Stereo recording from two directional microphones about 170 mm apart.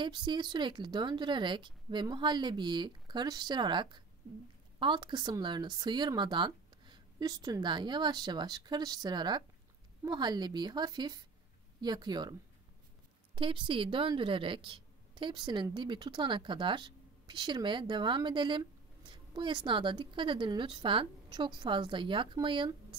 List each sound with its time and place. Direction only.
0.0 s a woman's voice: 25° right (ahead or behind)